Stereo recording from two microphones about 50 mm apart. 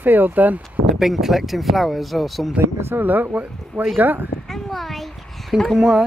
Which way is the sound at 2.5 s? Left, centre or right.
Right.